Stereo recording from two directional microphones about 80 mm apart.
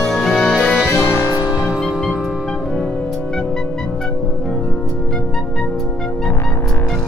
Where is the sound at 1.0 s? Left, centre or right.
Left.